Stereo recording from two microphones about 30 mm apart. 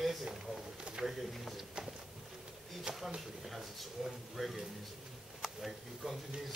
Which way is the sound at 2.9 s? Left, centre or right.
Right.